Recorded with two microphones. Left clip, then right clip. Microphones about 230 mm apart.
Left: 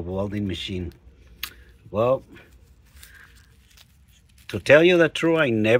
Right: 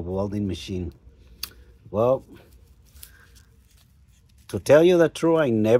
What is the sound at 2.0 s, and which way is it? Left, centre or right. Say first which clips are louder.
Speech: even; centre.